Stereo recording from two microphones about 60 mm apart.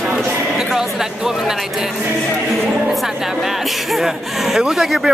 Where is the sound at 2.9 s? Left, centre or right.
Centre.